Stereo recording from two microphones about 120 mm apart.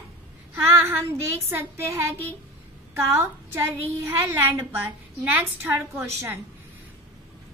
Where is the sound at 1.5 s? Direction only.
20° right (ahead or behind).